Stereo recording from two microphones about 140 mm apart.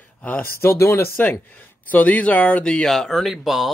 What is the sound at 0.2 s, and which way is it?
Speech, 10° left (ahead or behind).